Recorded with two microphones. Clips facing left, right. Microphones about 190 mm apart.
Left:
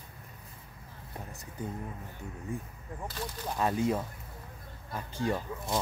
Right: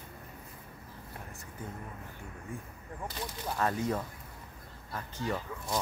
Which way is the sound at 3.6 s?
15° left (ahead or behind).